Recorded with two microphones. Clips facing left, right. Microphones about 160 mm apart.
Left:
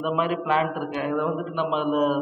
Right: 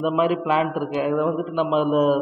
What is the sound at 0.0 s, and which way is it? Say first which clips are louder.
A man's voice: right 4 dB; 15° right (ahead or behind).